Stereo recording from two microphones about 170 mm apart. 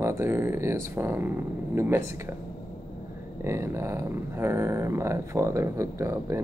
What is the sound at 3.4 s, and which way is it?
Speech, 15° right (ahead or behind).